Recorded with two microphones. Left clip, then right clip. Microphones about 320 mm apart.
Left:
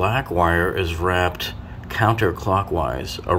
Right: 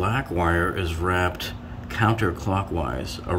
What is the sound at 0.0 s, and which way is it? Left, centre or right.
Speech, centre.